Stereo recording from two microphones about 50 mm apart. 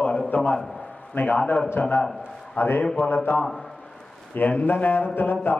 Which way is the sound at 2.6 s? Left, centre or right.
Left.